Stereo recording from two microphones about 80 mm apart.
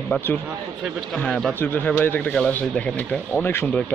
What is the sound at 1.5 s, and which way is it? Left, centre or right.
Speech, left.